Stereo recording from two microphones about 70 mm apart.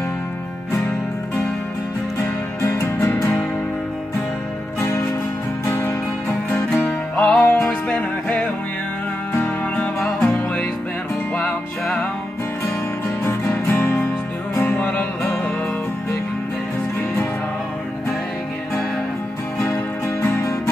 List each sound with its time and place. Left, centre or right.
2.6 s music: left
4.7 s music: left
7.2 s music: centre
9.9 s music: centre
11.3 s music: centre
13.2 s music: left
19.6 s music: left